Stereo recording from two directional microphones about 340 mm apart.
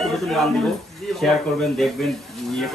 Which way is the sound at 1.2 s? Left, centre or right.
Centre.